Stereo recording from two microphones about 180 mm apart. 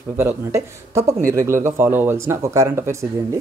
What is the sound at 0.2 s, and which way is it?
Speech, 15° right (ahead or behind).